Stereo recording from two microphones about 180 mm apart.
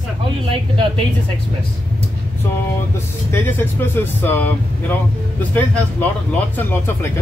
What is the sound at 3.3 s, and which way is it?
Speech, 10° left (ahead or behind).